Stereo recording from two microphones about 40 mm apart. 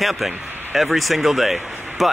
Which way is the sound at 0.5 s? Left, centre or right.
Right.